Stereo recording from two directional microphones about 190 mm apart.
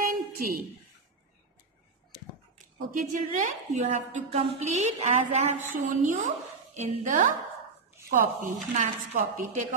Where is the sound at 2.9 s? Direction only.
45° right (ahead or behind).